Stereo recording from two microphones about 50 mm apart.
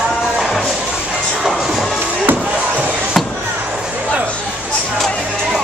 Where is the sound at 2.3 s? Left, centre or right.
Right.